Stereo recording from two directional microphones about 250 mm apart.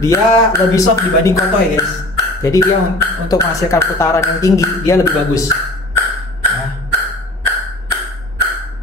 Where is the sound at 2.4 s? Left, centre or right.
Centre.